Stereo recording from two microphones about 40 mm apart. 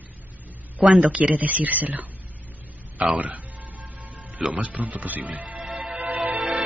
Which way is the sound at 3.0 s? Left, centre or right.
Right.